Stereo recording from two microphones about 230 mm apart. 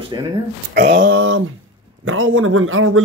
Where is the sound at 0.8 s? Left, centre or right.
Right.